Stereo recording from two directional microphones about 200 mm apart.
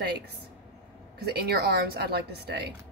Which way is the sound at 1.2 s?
50° right (ahead or behind).